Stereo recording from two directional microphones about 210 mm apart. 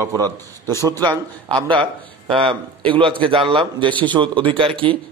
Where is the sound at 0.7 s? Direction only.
15° right (ahead or behind).